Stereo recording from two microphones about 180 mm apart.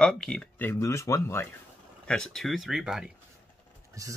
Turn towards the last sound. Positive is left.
turn(degrees=-20)  # may be behind; listen again after turning